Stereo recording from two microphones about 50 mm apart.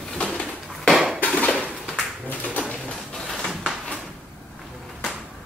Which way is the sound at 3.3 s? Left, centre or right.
Centre.